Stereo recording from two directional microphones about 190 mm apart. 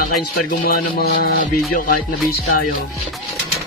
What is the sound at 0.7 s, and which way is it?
Music, 55° left (ahead or behind).